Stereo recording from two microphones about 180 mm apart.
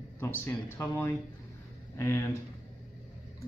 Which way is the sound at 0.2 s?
15° left (ahead or behind).